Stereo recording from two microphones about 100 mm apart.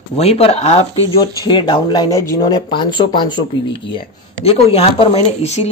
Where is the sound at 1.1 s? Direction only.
45° left (ahead or behind).